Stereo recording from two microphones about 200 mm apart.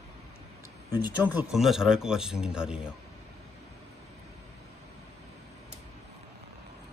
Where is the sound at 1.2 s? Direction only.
10° right (ahead or behind).